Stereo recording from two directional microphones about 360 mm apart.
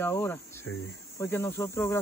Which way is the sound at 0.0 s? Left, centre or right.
Centre.